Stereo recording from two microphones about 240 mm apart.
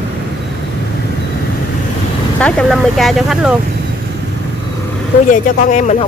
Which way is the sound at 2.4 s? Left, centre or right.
Centre.